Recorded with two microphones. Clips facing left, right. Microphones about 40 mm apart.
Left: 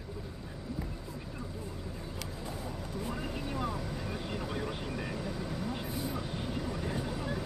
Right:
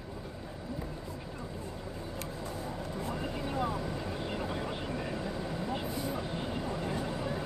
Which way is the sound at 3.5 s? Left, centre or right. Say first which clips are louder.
Right 4 dB; centre.